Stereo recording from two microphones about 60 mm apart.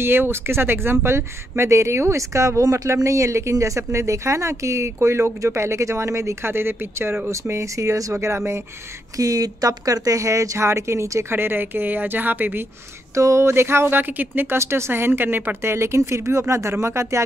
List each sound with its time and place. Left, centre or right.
0.0 s speech: right
7.2 s speech: right
9.1 s speech: right
11.3 s speech: right
13.1 s speech: right
14.6 s speech: right